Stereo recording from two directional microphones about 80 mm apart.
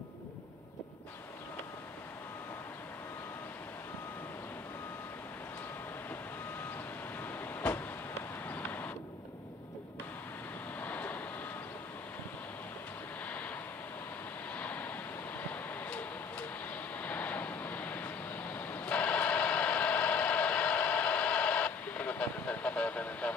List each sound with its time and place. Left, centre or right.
7.2 s vehicle: left
10.8 s vehicle: left
13.2 s vehicle: centre
14.5 s vehicle: centre